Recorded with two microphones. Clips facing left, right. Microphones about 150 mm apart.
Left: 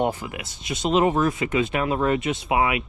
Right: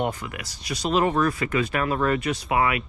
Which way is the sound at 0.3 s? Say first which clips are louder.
Left 1 dB; 25° left (ahead or behind).